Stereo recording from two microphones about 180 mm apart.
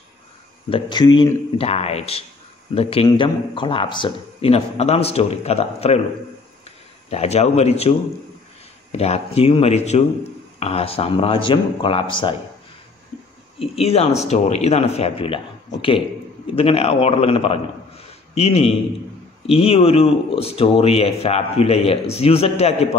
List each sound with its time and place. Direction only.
0.7 s a man's voice: 30° left (ahead or behind)
7.1 s a man's voice: 35° left (ahead or behind)
8.9 s a man's voice: 35° left (ahead or behind)
13.6 s a man's voice: 35° left (ahead or behind)